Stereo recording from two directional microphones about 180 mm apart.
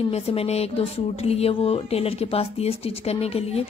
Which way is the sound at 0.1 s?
35° left (ahead or behind).